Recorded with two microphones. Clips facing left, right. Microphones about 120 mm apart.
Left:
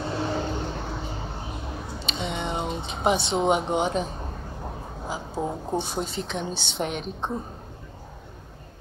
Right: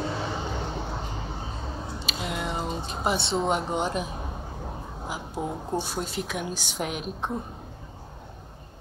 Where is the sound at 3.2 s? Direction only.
Centre (ahead or behind).